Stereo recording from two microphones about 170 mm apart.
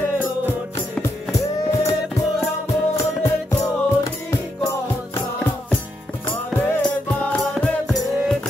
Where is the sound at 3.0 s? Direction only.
15° left (ahead or behind).